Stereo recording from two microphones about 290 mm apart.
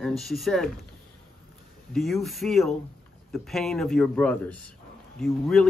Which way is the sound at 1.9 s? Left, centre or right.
Centre.